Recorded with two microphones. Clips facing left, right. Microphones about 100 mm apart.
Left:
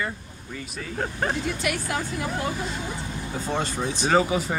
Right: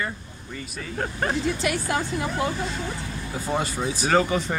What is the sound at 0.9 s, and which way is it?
Speech, centre (ahead or behind).